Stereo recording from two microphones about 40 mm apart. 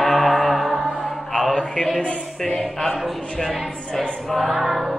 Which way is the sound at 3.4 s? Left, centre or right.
Centre.